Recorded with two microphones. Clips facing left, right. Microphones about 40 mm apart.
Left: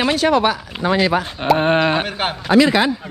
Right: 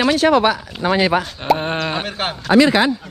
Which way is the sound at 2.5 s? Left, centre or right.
Right.